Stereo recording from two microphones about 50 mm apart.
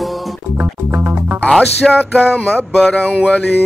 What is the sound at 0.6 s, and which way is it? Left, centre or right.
Music, right.